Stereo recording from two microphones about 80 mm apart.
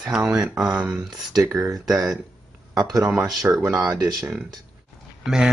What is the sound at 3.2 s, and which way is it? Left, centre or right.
Speech, right.